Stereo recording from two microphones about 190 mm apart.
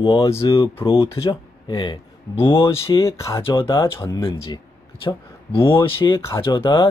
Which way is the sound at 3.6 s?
25° left (ahead or behind).